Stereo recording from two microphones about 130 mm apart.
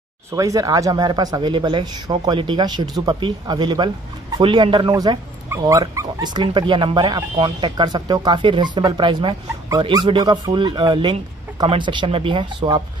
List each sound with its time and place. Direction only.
0.3 s speech: 25° right (ahead or behind)